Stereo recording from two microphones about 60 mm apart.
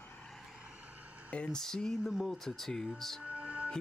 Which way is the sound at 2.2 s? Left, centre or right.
Centre.